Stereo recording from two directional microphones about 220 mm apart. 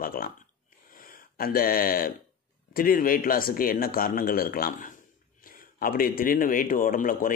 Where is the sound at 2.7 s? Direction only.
40° left (ahead or behind).